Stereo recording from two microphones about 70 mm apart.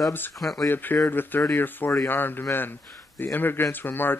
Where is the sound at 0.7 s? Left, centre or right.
Left.